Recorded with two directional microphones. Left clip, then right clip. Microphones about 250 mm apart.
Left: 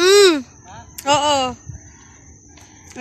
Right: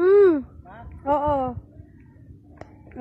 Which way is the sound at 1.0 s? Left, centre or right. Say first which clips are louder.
Left 6 dB; centre.